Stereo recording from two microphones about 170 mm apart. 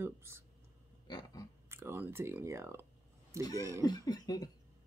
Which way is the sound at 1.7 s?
15° right (ahead or behind).